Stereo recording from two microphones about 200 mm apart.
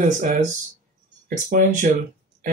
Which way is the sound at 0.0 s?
40° right (ahead or behind).